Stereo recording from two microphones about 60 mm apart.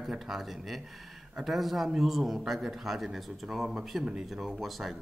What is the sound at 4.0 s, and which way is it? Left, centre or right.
Speech, centre.